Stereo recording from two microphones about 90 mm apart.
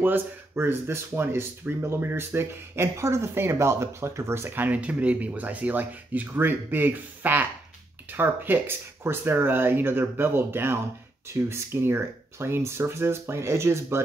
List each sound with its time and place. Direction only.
0.0 s speech: 25° right (ahead or behind)